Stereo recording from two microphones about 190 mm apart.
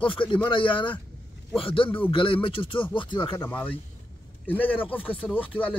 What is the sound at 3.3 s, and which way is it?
Speech, 10° left (ahead or behind).